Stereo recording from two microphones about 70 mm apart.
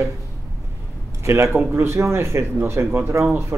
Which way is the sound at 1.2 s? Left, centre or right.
Right.